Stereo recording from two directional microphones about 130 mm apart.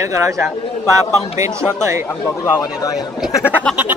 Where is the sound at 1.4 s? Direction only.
20° right (ahead or behind).